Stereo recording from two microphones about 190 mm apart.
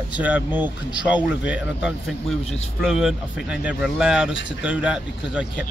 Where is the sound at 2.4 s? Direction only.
35° left (ahead or behind).